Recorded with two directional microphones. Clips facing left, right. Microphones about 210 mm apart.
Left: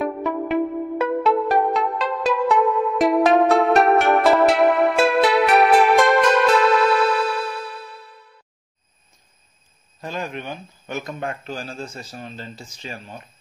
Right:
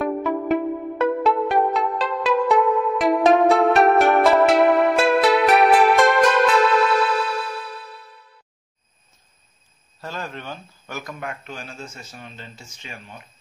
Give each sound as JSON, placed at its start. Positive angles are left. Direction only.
{"t": 0.0, "sound": "music", "side_deg": 0}
{"t": 9.9, "sound": "a man's voice", "side_deg": 15}